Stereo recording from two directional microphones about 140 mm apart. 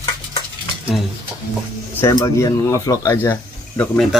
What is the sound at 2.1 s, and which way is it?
Speech, 25° left (ahead or behind).